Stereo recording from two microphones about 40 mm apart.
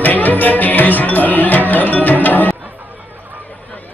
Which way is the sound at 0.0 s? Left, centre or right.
Left.